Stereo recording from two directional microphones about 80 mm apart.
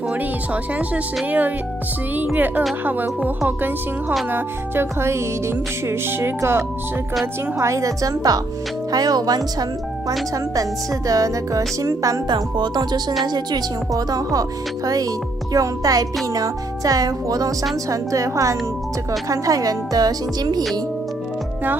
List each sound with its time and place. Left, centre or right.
0.7 s speech: centre
4.3 s music: right
7.5 s speech: right
12.5 s speech: right
15.5 s speech: right